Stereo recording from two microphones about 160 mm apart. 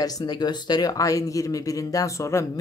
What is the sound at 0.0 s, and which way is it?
Speech, 25° left (ahead or behind).